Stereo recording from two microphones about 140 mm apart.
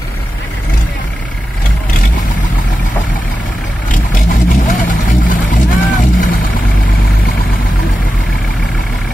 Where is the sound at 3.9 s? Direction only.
70° left (ahead or behind).